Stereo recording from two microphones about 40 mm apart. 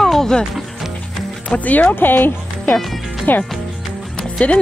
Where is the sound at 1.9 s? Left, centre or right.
Left.